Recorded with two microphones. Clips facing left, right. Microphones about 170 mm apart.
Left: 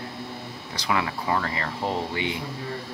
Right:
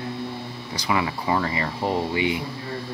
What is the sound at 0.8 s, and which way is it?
Speech, 5° right (ahead or behind).